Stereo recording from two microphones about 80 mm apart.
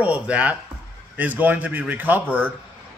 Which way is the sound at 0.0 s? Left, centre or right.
Centre.